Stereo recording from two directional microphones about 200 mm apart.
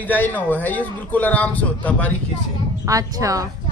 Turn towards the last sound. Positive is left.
turn(degrees=-15)  # may be behind; listen again after turning